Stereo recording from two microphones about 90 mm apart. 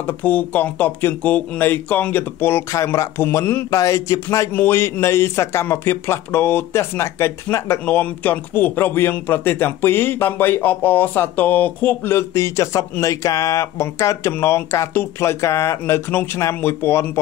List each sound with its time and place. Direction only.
0.0 s a man's voice: 20° left (ahead or behind)
2.7 s speech: 35° left (ahead or behind)
3.7 s speech: 35° left (ahead or behind)
4.5 s a man's voice: 25° left (ahead or behind)
7.8 s a man's voice: 20° left (ahead or behind)